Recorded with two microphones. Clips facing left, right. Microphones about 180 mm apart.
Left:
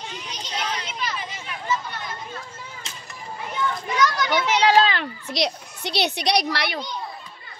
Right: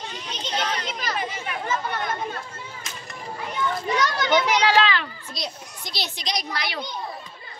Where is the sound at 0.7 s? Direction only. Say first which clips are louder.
Right 2 dB; 45° right (ahead or behind).